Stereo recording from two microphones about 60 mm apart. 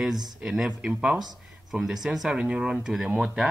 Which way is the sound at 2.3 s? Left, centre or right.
Centre.